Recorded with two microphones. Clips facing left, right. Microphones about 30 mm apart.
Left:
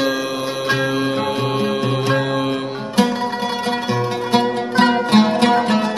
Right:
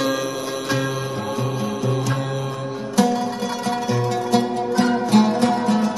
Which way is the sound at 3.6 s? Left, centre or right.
Left.